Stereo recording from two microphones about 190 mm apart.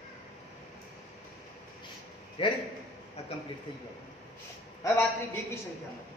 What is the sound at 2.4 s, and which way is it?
Speech, 30° left (ahead or behind).